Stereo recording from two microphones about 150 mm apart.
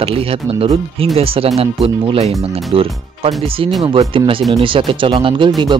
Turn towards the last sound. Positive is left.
turn(degrees=-30)  # may be behind; listen again after turning